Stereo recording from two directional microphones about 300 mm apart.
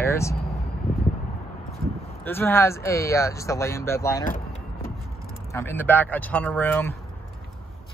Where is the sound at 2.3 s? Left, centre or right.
Centre.